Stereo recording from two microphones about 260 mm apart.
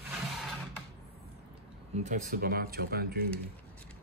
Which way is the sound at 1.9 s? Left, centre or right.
Right.